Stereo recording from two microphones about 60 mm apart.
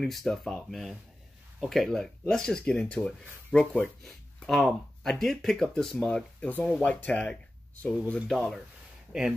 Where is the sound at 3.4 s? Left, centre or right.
Left.